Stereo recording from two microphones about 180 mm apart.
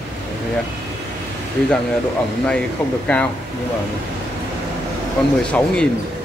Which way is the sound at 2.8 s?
10° left (ahead or behind).